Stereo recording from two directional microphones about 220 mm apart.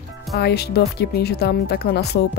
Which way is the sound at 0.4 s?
45° left (ahead or behind).